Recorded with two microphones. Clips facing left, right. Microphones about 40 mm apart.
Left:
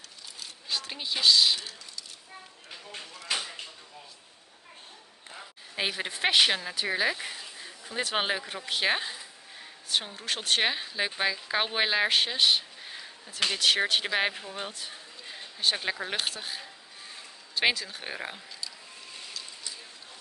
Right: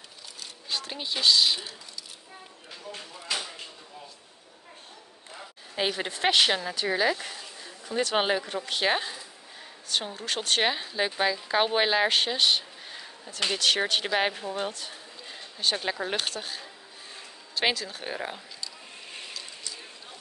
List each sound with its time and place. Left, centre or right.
0.7 s speech: centre
2.9 s a sound: left
5.8 s speech: centre